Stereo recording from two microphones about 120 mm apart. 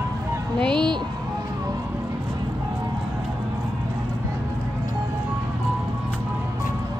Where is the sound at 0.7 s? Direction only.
40° right (ahead or behind).